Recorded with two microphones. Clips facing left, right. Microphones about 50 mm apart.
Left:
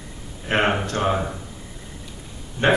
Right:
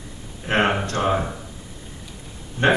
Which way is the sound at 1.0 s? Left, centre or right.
Centre.